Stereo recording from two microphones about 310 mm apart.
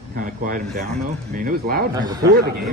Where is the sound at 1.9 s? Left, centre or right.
Centre.